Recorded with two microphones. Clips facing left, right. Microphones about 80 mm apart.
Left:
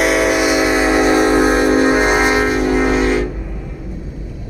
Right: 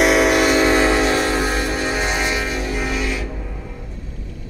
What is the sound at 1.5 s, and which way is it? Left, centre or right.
Music, left.